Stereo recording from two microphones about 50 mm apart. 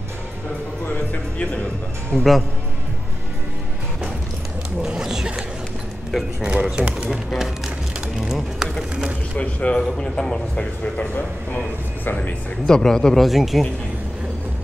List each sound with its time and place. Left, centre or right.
0.9 s music: left
2.1 s a man's voice: centre
4.8 s a sound: centre
6.4 s speech: centre
7.3 s a sound: centre
8.2 s speech: centre
9.4 s speech: left
9.8 s a man's voice: centre
12.6 s a man's voice: centre
13.2 s speech: centre